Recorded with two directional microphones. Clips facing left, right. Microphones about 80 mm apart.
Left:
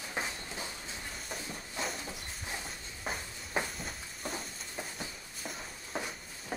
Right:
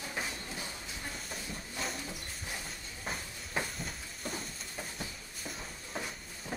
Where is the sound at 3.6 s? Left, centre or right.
Centre.